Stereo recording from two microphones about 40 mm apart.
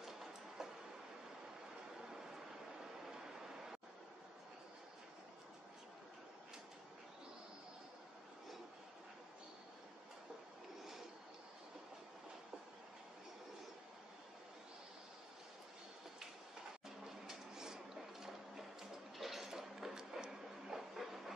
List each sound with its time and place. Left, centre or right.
0.0 s train: centre
17.0 s a sound: centre
18.2 s music: centre